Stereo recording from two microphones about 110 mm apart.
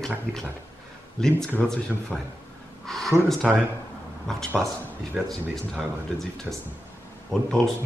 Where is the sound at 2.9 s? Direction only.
Centre (ahead or behind).